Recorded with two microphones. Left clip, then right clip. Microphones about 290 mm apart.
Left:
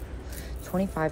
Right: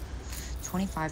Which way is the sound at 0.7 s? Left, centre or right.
Centre.